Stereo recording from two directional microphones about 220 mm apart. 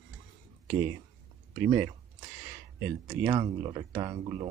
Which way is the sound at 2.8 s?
15° right (ahead or behind).